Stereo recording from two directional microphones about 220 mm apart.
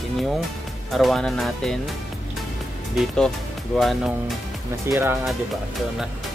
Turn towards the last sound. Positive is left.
turn(degrees=-15)  # may be behind; listen again after turning